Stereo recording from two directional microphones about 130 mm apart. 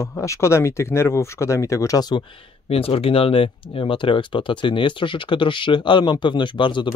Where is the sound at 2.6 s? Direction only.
45° left (ahead or behind).